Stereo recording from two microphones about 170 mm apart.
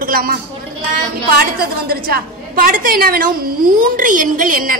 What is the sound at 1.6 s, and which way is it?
A woman's voice, 60° right (ahead or behind).